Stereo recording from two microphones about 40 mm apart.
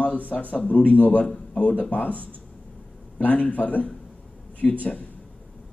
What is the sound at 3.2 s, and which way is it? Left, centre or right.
Speech, left.